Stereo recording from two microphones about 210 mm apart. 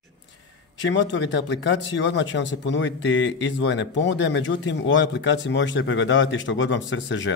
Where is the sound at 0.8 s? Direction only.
60° left (ahead or behind).